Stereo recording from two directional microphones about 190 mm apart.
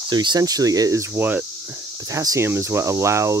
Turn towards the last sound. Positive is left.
turn(degrees=-15)  # may be behind; listen again after turning